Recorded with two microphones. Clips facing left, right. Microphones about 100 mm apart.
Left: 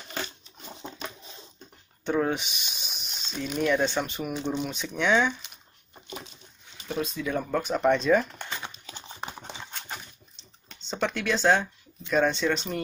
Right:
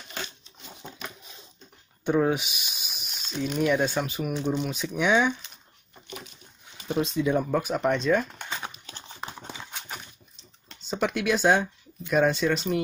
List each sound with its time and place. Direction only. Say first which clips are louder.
2.0 s speech: right 3 dB; 5° right (ahead or behind)
6.8 s speech: right 5 dB; 25° right (ahead or behind)
7.3 s speech: right 2 dB; 5° right (ahead or behind)
8.9 s clip-clop: left 1 dB; 15° left (ahead or behind)
9.5 s a sound: even; 10° right (ahead or behind)
12.1 s speech: right 1 dB; 5° right (ahead or behind)